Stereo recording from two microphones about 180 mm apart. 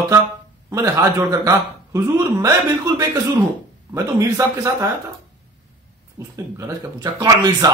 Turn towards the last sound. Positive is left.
turn(degrees=-20)  # may be behind; listen again after turning